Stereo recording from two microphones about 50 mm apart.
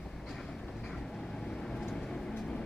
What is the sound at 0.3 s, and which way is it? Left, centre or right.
Vehicle, centre.